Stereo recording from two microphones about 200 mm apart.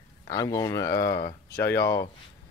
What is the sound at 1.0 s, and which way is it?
Speech, 45° left (ahead or behind).